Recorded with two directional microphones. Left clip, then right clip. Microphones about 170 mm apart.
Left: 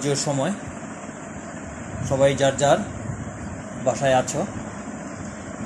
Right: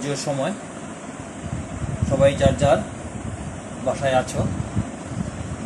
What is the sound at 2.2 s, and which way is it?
Speech, 35° left (ahead or behind).